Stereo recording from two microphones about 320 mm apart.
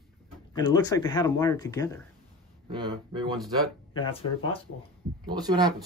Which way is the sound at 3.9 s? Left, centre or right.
Centre.